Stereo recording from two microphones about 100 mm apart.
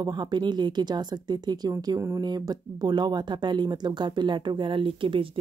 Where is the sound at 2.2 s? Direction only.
45° right (ahead or behind).